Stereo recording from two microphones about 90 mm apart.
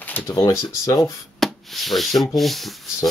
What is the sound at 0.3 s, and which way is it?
Speech, 45° left (ahead or behind).